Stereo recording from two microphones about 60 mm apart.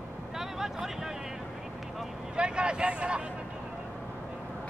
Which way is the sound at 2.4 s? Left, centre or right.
Centre.